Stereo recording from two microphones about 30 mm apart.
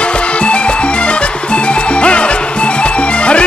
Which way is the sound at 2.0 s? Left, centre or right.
Left.